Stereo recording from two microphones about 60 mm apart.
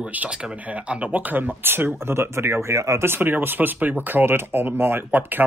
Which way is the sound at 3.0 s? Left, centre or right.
Right.